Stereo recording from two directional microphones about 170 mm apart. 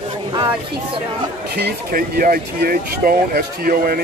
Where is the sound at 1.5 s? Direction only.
70° right (ahead or behind).